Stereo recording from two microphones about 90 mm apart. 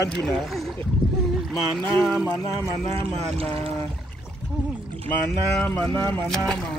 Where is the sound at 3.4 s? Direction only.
90° right.